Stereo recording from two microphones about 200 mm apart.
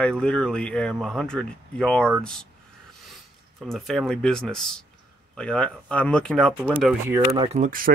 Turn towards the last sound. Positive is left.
turn(degrees=-45)  # may be behind; listen again after turning